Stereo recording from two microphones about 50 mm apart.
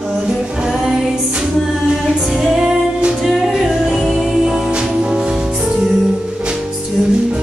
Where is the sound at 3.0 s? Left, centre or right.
Centre.